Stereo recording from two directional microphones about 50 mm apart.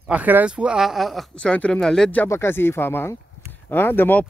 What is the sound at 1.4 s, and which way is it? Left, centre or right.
Speech, left.